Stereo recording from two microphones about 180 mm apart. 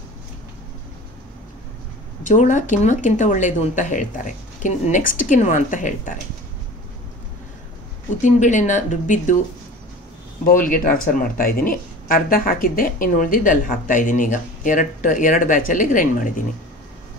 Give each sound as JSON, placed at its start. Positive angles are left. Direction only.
{"t": 2.2, "sound": "speech", "side_deg": 45}
{"t": 8.2, "sound": "speech", "side_deg": 45}
{"t": 10.4, "sound": "speech", "side_deg": 50}